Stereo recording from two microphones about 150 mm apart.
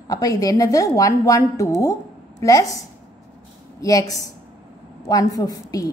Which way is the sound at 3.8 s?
25° left (ahead or behind).